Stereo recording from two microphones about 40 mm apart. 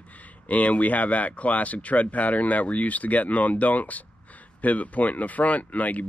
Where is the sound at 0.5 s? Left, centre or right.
Left.